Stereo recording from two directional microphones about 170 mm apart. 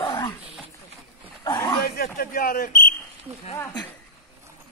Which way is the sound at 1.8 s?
60° left (ahead or behind).